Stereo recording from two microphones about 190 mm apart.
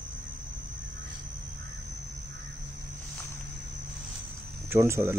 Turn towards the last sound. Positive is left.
turn(degrees=-15)  # may be behind; listen again after turning